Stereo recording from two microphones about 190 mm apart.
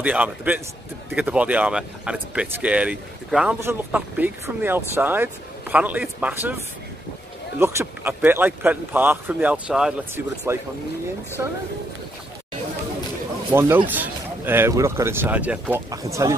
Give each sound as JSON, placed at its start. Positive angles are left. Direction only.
{"t": 0.0, "sound": "speech", "side_deg": -10}
{"t": 7.5, "sound": "speech", "side_deg": -10}
{"t": 13.5, "sound": "speech", "side_deg": -10}
{"t": 15.9, "sound": "speech", "side_deg": -15}